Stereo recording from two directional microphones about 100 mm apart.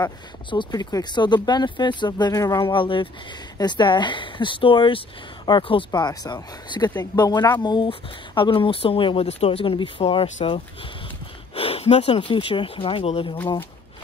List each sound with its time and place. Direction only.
0.5 s speech: 50° left (ahead or behind)
2.6 s speech: 55° left (ahead or behind)
5.9 s speech: 40° left (ahead or behind); by 10.6 s 65° left (ahead or behind)
11.5 s speech: 85° left